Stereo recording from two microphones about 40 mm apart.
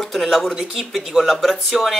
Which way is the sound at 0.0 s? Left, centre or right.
Centre.